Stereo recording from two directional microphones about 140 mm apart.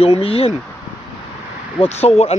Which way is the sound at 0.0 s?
45° left (ahead or behind).